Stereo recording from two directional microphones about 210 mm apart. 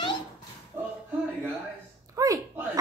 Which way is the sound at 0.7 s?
10° right (ahead or behind).